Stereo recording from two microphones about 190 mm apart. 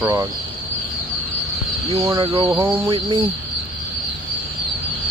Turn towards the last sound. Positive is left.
turn(degrees=-25)  # may be behind; listen again after turning